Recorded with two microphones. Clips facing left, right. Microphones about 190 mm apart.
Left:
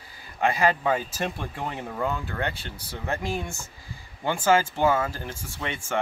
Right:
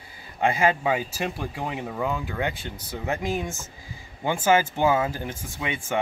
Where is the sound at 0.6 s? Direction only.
10° right (ahead or behind).